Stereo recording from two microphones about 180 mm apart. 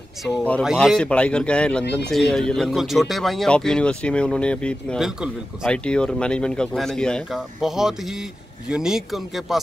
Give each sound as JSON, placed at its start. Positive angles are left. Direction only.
{"t": 0.2, "sound": "speech", "side_deg": 5}